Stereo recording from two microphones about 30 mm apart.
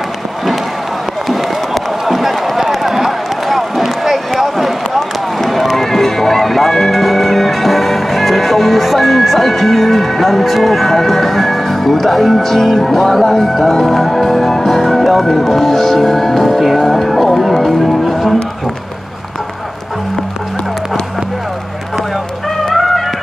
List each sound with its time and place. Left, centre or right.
2.0 s a sound: centre
5.7 s run: centre
7.0 s music: centre
13.2 s speech: centre
13.8 s speech: centre
17.1 s music: centre
17.6 s speech: centre
22.7 s music: centre